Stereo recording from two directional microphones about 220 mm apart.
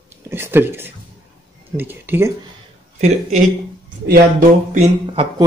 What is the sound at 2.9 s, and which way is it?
Speech, 30° right (ahead or behind).